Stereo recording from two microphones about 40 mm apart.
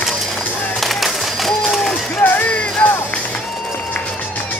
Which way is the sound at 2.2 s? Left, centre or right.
Left.